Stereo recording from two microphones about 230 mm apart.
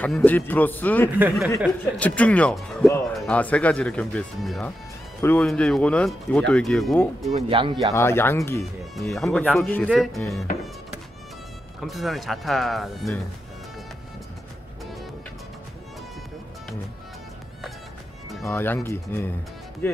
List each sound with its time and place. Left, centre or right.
0.0 s a man's voice: centre
7.2 s speech: right
7.9 s a man's voice: centre
11.8 s speech: centre
18.3 s a man's voice: centre